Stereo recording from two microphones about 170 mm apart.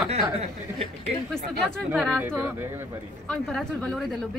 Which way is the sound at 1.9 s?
5° right (ahead or behind).